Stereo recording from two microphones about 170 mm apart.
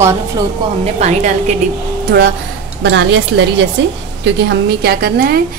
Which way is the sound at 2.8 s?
90° right.